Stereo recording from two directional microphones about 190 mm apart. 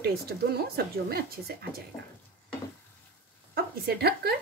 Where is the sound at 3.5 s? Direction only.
55° right (ahead or behind).